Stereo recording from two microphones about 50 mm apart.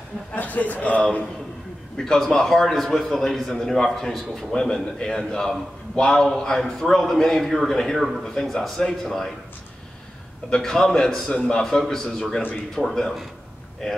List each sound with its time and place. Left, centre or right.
0.4 s a man's voice: left
2.0 s a man's voice: centre
10.5 s a man's voice: centre